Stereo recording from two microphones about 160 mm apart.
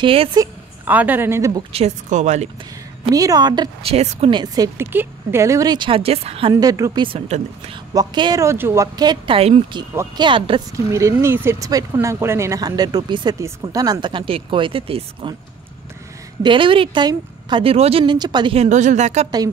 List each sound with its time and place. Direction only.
0.0 s a woman's voice: 35° right (ahead or behind)
0.8 s a woman's voice: 10° right (ahead or behind)
1.7 s speech: 40° right (ahead or behind)
3.1 s speech: 20° right (ahead or behind)
3.9 s a woman's voice: 40° right (ahead or behind)
4.3 s speech: 25° right (ahead or behind)
4.7 s speech: 15° right (ahead or behind); by 6.5 s 40° right (ahead or behind)
6.5 s speech: 20° right (ahead or behind)
7.1 s a woman's voice: 40° right (ahead or behind)
7.9 s a woman's voice: 25° right (ahead or behind)
10.9 s speech: 20° right (ahead or behind); by 15.3 s 35° right (ahead or behind)
16.4 s a woman's voice: 30° right (ahead or behind); by 19.2 s 50° right (ahead or behind)